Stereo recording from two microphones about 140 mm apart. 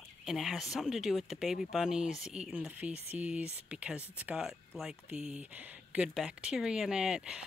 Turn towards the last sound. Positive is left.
turn(degrees=-5)  # may be behind; listen again after turning